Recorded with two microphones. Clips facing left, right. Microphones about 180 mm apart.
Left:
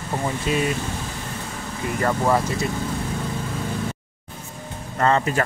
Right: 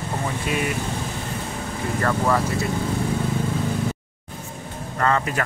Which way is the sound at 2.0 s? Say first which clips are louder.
Left 1 dB; 20° left (ahead or behind).